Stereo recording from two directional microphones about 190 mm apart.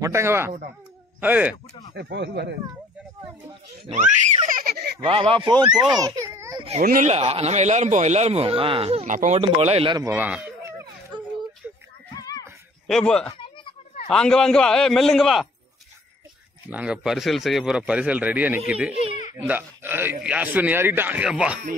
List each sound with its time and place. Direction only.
0.0 s speech: 15° right (ahead or behind)
2.0 s speech: 60° right (ahead or behind)
3.9 s speech: 40° right (ahead or behind)
5.0 s a child's voice: 30° right (ahead or behind)
6.8 s a man's voice: 45° right (ahead or behind)
9.4 s speech: 30° right (ahead or behind)
10.1 s a sound: 10° right (ahead or behind)
12.2 s a sound: 20° left (ahead or behind)
12.8 s speech: 5° left (ahead or behind)
13.3 s a sound: 25° left (ahead or behind)
14.0 s speech: 5° left (ahead or behind)
16.6 s speech: 5° right (ahead or behind)